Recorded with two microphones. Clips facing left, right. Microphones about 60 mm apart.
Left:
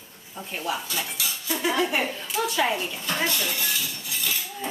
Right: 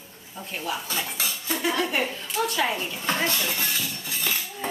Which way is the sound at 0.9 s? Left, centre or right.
Right.